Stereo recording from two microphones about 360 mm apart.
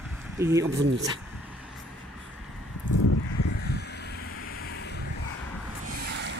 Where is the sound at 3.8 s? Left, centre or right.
Left.